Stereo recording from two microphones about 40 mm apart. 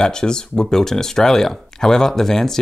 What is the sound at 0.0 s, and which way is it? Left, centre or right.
Speech, centre.